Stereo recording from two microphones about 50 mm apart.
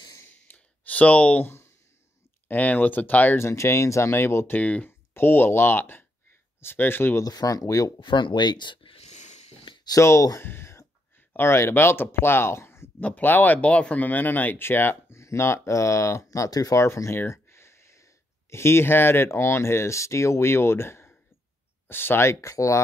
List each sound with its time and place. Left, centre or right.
0.5 s a sound: left
1.4 s speech: left
2.4 s speech: left
3.3 s speech: left
4.5 s speech: left
4.8 s speech: left
7.2 s speech: left
9.9 s speech: left
10.4 s speech: left
11.3 s speech: left
13.2 s speech: left
14.0 s speech: left
15.1 s speech: left